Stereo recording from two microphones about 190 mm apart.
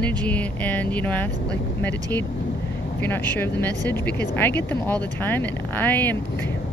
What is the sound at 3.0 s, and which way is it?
Speech, 10° left (ahead or behind).